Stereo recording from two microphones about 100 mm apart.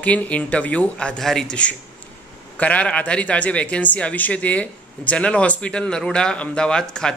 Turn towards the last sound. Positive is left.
turn(degrees=10)  # may be behind; listen again after turning